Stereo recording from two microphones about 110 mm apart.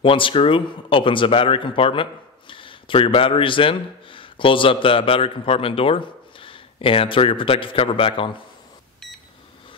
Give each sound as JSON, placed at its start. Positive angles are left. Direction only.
{"t": 0.0, "sound": "speech", "side_deg": 55}